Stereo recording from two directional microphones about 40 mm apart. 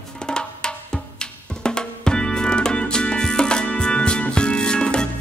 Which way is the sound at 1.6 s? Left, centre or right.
Left.